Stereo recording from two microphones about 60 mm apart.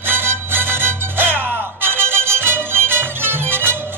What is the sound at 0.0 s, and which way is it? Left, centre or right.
Music, right.